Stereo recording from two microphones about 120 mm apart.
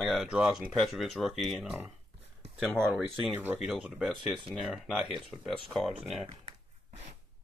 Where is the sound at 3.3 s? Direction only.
15° right (ahead or behind).